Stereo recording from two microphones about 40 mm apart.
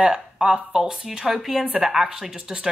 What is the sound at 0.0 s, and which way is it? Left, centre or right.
Speech, centre.